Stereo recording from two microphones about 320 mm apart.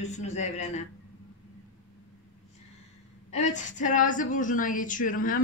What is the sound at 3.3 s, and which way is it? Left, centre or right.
A woman's voice, left.